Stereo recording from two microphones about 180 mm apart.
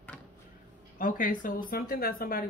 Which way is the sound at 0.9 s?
50° left (ahead or behind).